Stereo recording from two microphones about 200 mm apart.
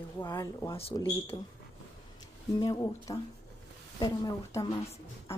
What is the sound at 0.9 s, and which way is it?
Speech, 25° left (ahead or behind).